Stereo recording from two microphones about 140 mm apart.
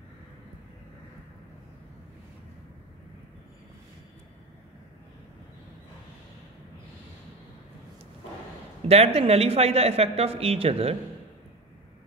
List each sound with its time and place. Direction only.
8.8 s speech: 45° right (ahead or behind)